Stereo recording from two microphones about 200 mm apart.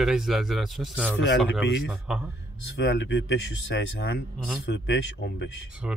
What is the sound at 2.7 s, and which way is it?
Speech, 65° left (ahead or behind).